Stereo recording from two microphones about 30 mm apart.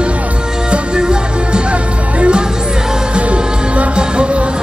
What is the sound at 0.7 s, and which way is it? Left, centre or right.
Music, right.